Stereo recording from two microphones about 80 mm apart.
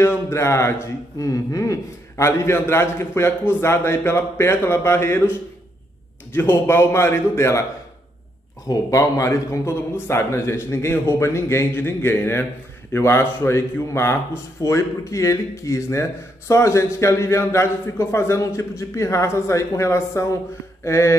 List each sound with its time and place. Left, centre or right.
0.0 s a man's voice: left
6.3 s a man's voice: left
8.6 s a man's voice: left